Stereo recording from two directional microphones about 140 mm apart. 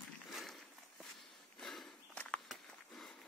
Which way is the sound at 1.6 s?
Centre (ahead or behind).